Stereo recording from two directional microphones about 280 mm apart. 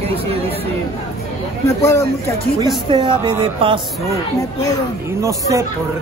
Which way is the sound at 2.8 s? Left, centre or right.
Centre.